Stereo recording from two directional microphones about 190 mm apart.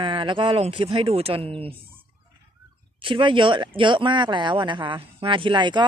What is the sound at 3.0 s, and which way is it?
Speech, 25° right (ahead or behind).